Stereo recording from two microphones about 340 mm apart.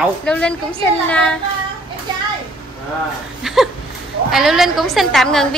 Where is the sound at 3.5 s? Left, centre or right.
Centre.